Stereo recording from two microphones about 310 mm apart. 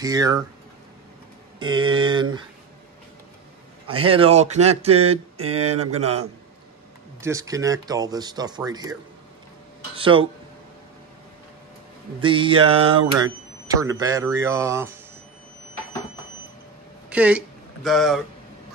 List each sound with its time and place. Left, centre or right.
0.0 s speech: centre
1.6 s speech: centre
3.8 s speech: centre
7.2 s speech: centre
9.9 s speech: centre
12.2 s speech: centre
17.1 s speech: centre